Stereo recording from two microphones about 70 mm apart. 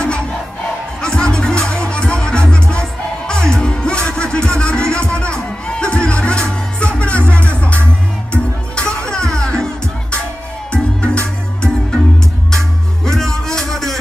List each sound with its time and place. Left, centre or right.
1.0 s music: centre
10.7 s music: centre
13.0 s music: centre